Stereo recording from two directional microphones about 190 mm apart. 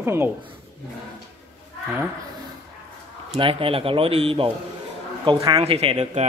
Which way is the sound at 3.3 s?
30° right (ahead or behind).